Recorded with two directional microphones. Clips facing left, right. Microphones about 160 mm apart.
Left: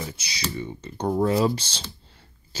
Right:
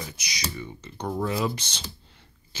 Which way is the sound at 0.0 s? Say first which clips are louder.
Left 3 dB; 30° left (ahead or behind).